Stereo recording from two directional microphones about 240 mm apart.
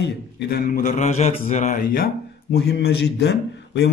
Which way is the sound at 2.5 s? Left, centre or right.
Left.